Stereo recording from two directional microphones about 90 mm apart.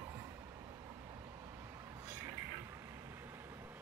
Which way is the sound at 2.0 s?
30° right (ahead or behind).